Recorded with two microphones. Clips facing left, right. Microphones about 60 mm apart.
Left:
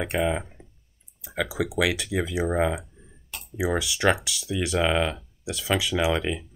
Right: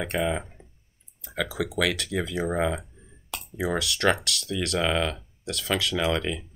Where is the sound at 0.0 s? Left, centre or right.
Centre.